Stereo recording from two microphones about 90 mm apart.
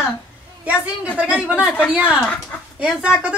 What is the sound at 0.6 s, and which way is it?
Speech, 15° right (ahead or behind).